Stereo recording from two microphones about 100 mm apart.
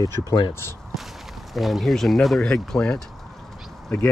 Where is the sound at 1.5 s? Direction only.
Centre (ahead or behind).